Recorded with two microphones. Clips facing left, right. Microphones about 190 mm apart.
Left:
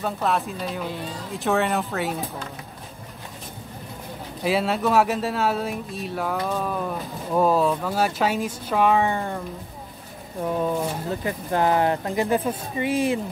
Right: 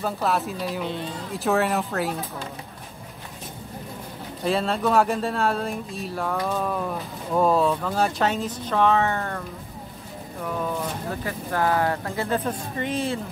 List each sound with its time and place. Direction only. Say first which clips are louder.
0.0 s speech: even; centre (ahead or behind)
4.4 s speech: left 1 dB; 5° left (ahead or behind)
10.4 s speech: left 4 dB; 25° left (ahead or behind); by 13.2 s 10° left (ahead or behind)